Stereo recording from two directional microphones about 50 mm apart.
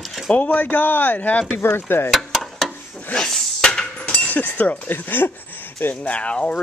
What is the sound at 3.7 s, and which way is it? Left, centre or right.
Hammer, centre.